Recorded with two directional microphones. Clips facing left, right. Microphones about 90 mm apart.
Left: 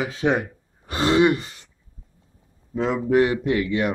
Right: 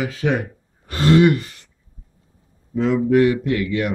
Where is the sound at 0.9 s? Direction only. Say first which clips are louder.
Right 3 dB; 20° left (ahead or behind).